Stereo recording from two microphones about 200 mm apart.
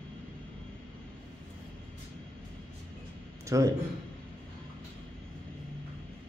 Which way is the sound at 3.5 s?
15° right (ahead or behind).